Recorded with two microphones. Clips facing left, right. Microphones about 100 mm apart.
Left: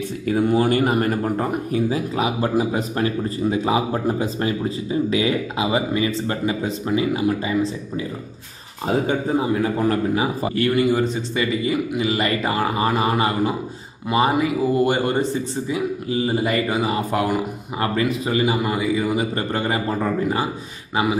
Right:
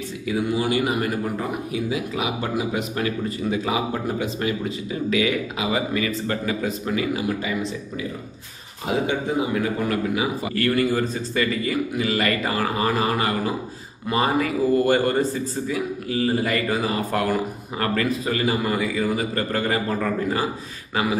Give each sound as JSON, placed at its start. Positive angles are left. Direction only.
{"t": 0.3, "sound": "speech", "side_deg": 50}
{"t": 8.8, "sound": "speech", "side_deg": 35}
{"t": 10.5, "sound": "speech", "side_deg": 20}